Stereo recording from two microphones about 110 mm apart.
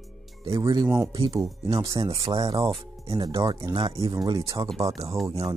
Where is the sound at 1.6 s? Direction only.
30° right (ahead or behind).